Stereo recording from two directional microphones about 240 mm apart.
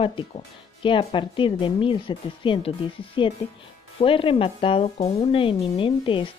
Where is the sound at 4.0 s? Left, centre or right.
Left.